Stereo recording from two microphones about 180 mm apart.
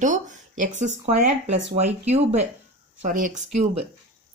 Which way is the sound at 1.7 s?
35° right (ahead or behind).